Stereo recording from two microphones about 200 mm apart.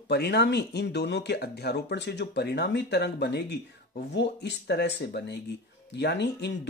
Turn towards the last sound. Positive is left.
turn(degrees=55)  # may be behind; listen again after turning